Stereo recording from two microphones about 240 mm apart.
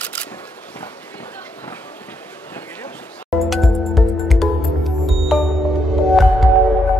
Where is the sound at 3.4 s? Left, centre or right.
Centre.